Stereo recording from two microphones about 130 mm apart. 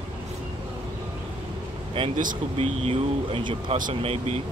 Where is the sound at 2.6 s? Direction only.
50° right (ahead or behind).